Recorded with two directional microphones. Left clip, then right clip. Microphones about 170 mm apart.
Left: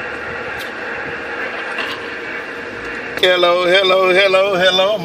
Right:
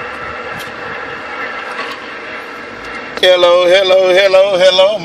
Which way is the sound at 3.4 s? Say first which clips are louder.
Right 4 dB; 35° right (ahead or behind).